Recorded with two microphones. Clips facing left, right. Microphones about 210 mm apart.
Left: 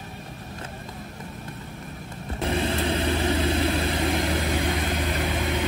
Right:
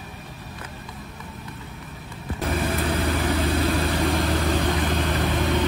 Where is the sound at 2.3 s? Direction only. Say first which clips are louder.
Even; 25° left (ahead or behind).